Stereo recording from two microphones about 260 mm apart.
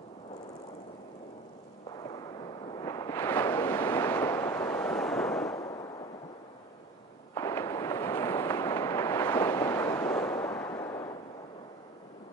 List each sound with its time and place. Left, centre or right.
2.8 s a sound: centre
5.6 s fireworks: centre
7.3 s fireworks: centre